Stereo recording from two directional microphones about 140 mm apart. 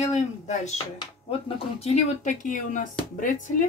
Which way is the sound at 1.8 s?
55° left (ahead or behind).